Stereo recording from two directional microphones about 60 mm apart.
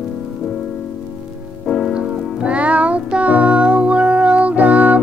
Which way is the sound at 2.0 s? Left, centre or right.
Right.